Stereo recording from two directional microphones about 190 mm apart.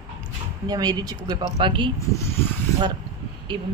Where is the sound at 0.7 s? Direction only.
20° right (ahead or behind).